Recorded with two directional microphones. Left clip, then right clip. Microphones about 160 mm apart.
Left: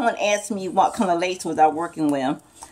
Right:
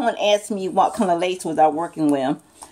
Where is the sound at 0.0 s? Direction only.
15° right (ahead or behind).